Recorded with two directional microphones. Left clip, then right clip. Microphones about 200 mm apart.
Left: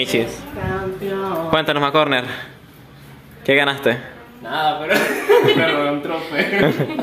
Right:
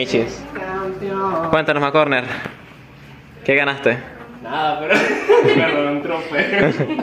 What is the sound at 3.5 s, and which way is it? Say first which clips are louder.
Speech: even; 10° left (ahead or behind).